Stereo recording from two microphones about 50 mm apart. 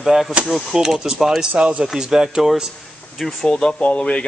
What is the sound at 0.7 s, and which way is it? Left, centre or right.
Speech, centre.